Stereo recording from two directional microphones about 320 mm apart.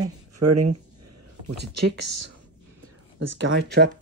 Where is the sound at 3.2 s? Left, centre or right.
Right.